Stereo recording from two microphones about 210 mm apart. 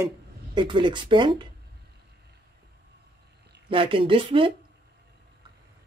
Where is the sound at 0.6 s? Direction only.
20° right (ahead or behind).